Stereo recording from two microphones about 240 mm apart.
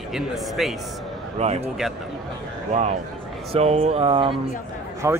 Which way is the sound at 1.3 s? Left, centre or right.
Right.